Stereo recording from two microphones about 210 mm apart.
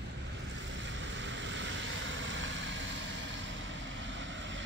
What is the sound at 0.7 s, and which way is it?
Vehicle, 60° right (ahead or behind).